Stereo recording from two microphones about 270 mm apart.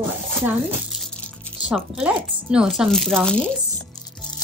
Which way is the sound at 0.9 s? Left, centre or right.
Centre.